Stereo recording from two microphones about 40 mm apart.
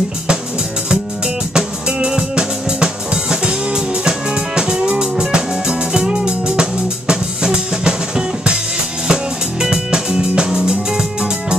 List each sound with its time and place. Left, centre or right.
1.5 s drum kit: right
5.3 s music: right
9.6 s music: centre